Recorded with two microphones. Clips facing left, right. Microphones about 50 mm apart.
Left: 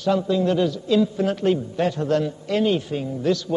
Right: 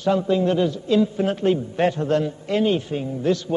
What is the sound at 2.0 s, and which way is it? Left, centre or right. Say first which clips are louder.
A man's voice: even; centre.